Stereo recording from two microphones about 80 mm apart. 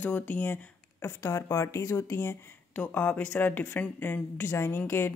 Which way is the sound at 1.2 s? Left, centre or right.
Left.